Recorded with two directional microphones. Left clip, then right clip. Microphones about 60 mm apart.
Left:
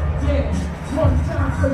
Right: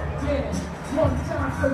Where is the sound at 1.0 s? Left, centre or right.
Right.